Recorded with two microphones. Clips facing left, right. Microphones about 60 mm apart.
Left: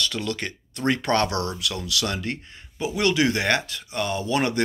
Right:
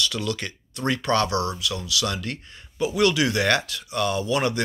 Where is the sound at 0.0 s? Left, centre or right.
Left.